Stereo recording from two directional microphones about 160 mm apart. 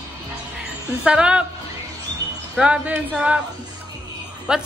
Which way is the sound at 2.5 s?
5° right (ahead or behind).